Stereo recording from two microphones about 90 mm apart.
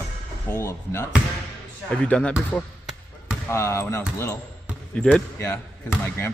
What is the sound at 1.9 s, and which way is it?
Speech, 10° left (ahead or behind).